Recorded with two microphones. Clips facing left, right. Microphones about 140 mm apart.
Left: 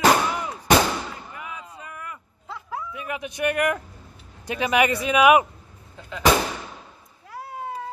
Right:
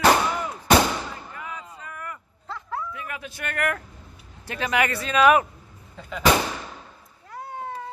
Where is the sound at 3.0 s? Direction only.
20° left (ahead or behind).